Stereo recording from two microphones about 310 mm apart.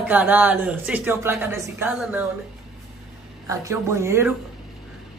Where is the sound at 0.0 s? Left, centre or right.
Centre.